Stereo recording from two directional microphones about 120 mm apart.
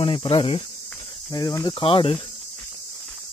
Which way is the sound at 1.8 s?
45° left (ahead or behind).